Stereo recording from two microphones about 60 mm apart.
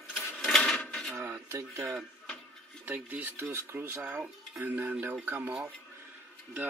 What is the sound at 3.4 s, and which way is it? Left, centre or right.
Dishes, right.